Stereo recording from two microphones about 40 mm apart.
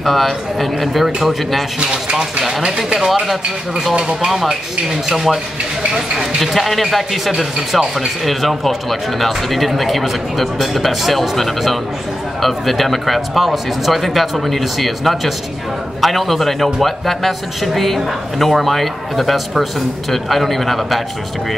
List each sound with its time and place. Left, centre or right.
0.0 s speech: centre
1.8 s speech: right
4.3 s speech: centre
6.4 s speech: centre